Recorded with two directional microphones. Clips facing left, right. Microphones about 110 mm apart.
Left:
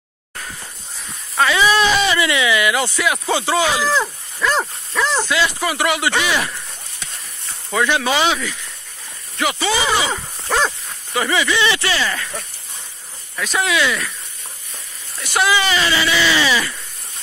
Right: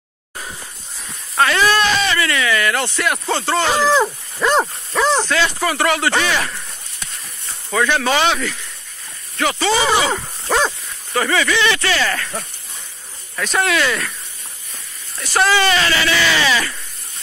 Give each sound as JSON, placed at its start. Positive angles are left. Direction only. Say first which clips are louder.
{"t": 1.3, "sound": "speech", "louder": "even", "side_deg": 0}
{"t": 4.0, "sound": "speech", "louder": "right 3 dB", "side_deg": -30}
{"t": 5.3, "sound": "speech", "louder": "right 1 dB", "side_deg": 15}
{"t": 7.7, "sound": "speech", "louder": "right 1 dB", "side_deg": 15}
{"t": 10.4, "sound": "dog", "louder": "right 1 dB", "side_deg": -15}
{"t": 11.1, "sound": "speech", "louder": "right 1 dB", "side_deg": 15}
{"t": 13.4, "sound": "speech", "louder": "right 1 dB", "side_deg": 0}
{"t": 15.1, "sound": "speech", "louder": "right 2 dB", "side_deg": 5}